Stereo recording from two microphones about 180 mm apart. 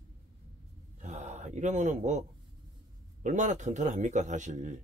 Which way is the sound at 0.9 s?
40° right (ahead or behind).